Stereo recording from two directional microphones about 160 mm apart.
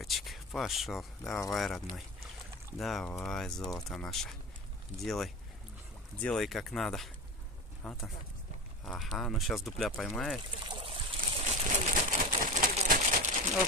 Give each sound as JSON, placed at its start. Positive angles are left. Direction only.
{"t": 0.0, "sound": "speech", "side_deg": 0}
{"t": 10.8, "sound": "boat", "side_deg": -35}
{"t": 11.1, "sound": "a sound", "side_deg": -55}